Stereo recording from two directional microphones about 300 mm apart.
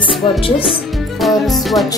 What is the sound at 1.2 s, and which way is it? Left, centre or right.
Music, centre.